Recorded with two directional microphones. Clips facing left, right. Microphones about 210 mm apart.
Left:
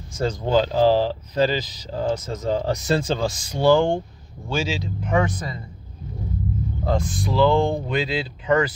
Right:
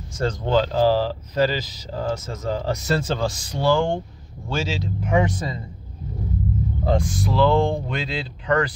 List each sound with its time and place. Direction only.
0.2 s speech: 10° left (ahead or behind)
4.5 s speech: centre (ahead or behind)
5.1 s speech: 20° right (ahead or behind)
7.0 s speech: 10° right (ahead or behind); by 8.7 s 5° left (ahead or behind)